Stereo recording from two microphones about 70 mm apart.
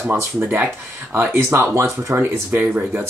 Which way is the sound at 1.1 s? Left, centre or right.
Right.